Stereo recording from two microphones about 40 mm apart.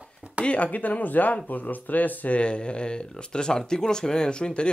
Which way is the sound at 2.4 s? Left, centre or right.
Left.